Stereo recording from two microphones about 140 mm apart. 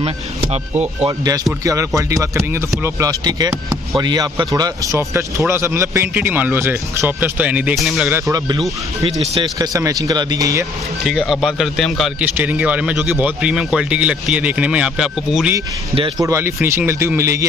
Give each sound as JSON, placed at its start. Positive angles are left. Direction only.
{"t": 1.0, "sound": "speech", "side_deg": -25}
{"t": 8.1, "sound": "speech", "side_deg": -25}
{"t": 11.1, "sound": "speech", "side_deg": -5}
{"t": 16.2, "sound": "speech", "side_deg": -20}